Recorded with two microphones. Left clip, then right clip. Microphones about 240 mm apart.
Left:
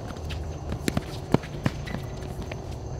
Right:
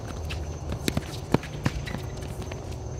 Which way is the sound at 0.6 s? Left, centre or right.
Left.